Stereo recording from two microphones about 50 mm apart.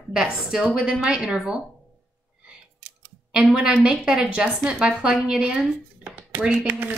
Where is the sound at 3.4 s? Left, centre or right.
Centre.